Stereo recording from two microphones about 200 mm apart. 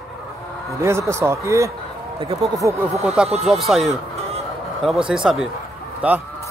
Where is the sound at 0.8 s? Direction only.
15° right (ahead or behind).